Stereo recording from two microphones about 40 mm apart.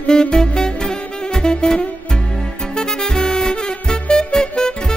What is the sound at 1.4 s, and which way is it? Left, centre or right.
Saxophone, centre.